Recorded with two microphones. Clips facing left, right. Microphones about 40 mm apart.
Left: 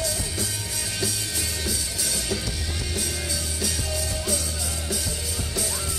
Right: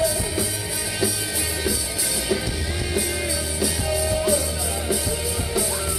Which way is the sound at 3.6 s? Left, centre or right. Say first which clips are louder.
Right 7 dB; centre.